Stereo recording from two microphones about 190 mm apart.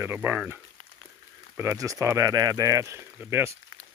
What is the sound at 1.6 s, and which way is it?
Speech, 15° right (ahead or behind).